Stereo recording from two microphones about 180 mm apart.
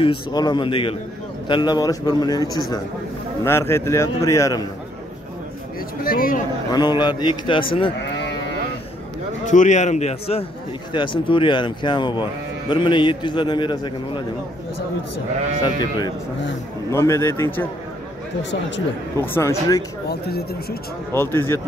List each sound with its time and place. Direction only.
0.0 s a man's voice: 25° left (ahead or behind)
6.0 s speech: 55° left (ahead or behind)
6.7 s speech: 25° left (ahead or behind)
9.5 s a man's voice: 40° left (ahead or behind); by 14.2 s 25° left (ahead or behind)
15.6 s a man's voice: 25° left (ahead or behind)
19.1 s a man's voice: 15° left (ahead or behind)
20.1 s speech: 60° left (ahead or behind)
21.1 s a man's voice: 15° left (ahead or behind)